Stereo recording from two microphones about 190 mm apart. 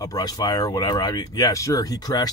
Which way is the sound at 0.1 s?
20° left (ahead or behind).